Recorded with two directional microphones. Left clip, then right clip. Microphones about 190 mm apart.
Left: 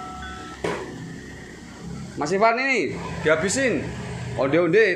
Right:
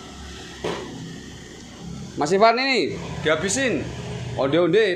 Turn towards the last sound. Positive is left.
turn(degrees=-5)  # may be behind; listen again after turning